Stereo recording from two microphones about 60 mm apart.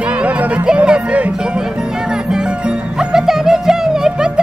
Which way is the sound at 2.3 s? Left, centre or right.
Centre.